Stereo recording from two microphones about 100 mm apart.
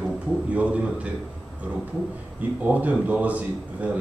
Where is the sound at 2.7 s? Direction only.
15° right (ahead or behind).